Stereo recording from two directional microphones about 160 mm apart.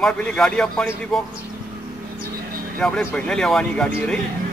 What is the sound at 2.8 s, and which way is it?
A man's voice, 10° left (ahead or behind).